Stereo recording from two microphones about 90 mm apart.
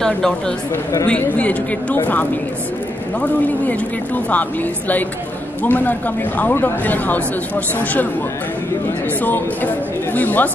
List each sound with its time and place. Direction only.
0.0 s speech: 5° left (ahead or behind)
9.2 s speech: 20° left (ahead or behind)